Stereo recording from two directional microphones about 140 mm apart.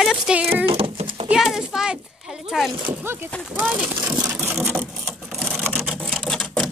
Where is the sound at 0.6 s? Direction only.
40° right (ahead or behind).